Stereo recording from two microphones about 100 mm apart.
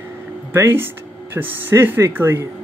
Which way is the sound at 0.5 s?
20° right (ahead or behind).